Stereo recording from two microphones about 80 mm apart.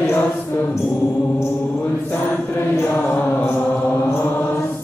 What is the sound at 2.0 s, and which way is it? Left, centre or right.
Mantra, centre.